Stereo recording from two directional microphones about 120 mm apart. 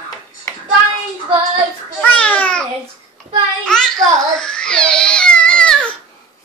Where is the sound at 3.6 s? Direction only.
5° left (ahead or behind).